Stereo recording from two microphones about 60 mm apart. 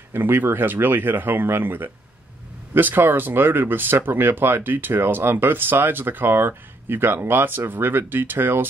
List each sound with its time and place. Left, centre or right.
0.1 s speech: right